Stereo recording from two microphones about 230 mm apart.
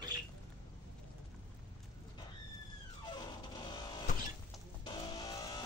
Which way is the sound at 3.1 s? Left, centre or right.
Centre.